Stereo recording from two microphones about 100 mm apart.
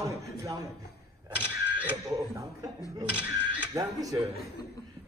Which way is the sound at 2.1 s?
30° right (ahead or behind).